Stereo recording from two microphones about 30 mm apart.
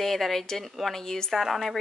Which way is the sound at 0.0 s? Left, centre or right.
Centre.